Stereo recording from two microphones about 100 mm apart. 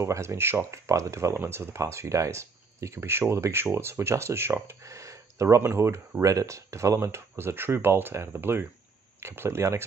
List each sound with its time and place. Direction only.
0.0 s speech: 30° right (ahead or behind)